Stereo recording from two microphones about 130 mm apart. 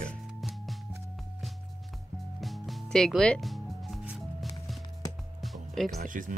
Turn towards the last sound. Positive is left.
turn(degrees=-90)